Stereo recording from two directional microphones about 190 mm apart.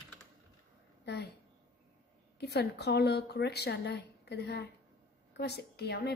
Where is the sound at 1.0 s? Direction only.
60° left (ahead or behind).